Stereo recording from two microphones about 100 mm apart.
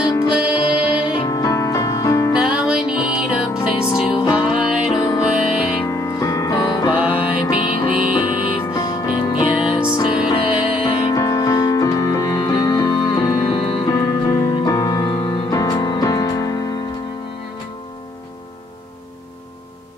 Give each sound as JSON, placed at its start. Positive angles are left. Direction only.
{"t": 0.0, "sound": "music", "side_deg": 30}
{"t": 0.3, "sound": "music", "side_deg": -10}
{"t": 1.2, "sound": "music", "side_deg": 35}
{"t": 2.3, "sound": "music", "side_deg": -10}
{"t": 5.9, "sound": "music", "side_deg": 30}
{"t": 7.0, "sound": "music", "side_deg": -15}
{"t": 7.5, "sound": "music", "side_deg": 60}
{"t": 8.6, "sound": "music", "side_deg": 35}
{"t": 9.6, "sound": "music", "side_deg": -5}
{"t": 10.0, "sound": "music", "side_deg": 55}
{"t": 11.1, "sound": "music", "side_deg": 35}
{"t": 13.5, "sound": "music", "side_deg": 65}
{"t": 13.8, "sound": "music", "side_deg": 35}